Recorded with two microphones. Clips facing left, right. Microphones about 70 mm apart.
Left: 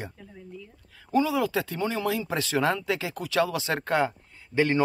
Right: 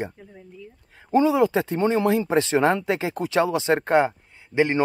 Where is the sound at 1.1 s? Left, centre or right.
Right.